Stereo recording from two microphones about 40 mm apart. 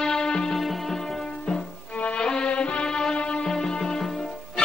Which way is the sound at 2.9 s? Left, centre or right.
Centre.